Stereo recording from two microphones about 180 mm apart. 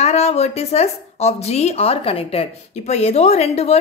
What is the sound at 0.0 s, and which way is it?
A woman's voice, 35° left (ahead or behind).